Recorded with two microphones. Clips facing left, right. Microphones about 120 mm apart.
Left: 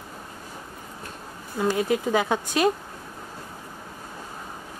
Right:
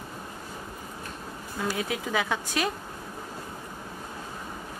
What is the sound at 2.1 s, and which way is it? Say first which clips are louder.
Speech: left 5 dB; 40° left (ahead or behind).